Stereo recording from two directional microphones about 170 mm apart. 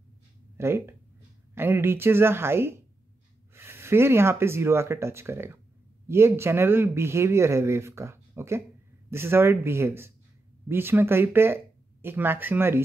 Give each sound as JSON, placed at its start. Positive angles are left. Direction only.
{"t": 0.6, "sound": "speech", "side_deg": -15}